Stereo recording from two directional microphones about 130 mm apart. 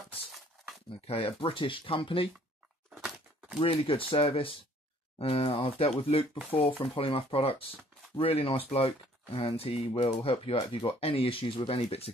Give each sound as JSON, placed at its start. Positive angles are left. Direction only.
{"t": 1.0, "sound": "speech", "side_deg": 45}
{"t": 2.9, "sound": "a sound", "side_deg": -5}
{"t": 3.5, "sound": "speech", "side_deg": 45}